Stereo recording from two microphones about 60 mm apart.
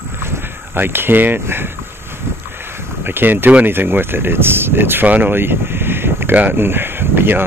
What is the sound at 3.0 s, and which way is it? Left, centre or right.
Speech, right.